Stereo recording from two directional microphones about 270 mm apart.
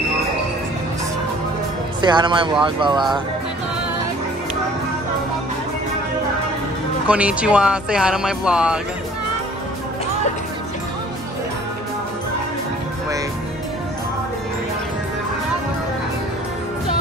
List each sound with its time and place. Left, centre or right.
2.0 s speech: centre
7.1 s speech: centre